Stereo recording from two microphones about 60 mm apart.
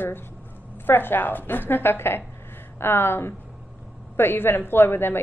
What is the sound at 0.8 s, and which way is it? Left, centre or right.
A woman's voice, left.